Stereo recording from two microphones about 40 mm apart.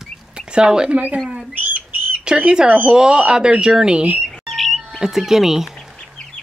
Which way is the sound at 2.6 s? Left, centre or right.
Right.